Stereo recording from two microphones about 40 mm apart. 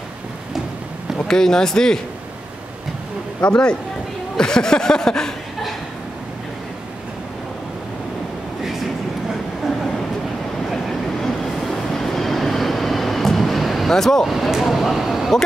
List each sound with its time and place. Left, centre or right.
1.3 s speech: centre
3.4 s speech: left
10.7 s train: centre
14.2 s a sound: centre